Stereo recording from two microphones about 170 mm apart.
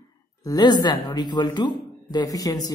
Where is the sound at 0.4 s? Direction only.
25° left (ahead or behind).